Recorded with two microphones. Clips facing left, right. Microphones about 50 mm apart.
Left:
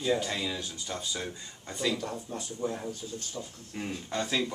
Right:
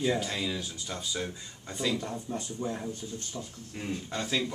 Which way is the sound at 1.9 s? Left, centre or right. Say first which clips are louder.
Even; right.